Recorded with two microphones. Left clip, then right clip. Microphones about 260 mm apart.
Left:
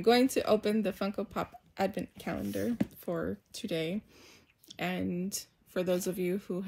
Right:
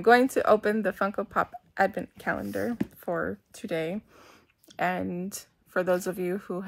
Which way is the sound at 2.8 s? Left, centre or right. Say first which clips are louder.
Right 5 dB; centre.